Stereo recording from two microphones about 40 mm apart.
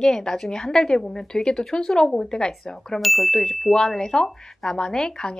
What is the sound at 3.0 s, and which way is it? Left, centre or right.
A woman's voice, centre.